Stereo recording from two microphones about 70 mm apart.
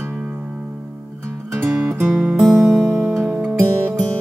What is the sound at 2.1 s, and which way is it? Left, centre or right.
Music, centre.